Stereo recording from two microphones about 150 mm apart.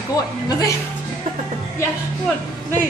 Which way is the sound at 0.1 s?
25° left (ahead or behind).